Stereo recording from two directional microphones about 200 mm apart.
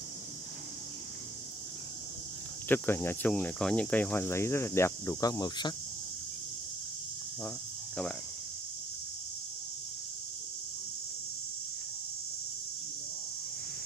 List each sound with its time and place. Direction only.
2.7 s speech: 10° left (ahead or behind)
7.4 s cricket: 5° left (ahead or behind)